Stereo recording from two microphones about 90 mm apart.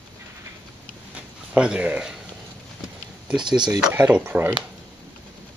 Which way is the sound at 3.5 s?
55° right (ahead or behind).